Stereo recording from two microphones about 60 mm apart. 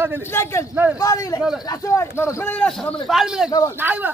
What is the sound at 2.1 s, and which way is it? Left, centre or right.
Speech, left.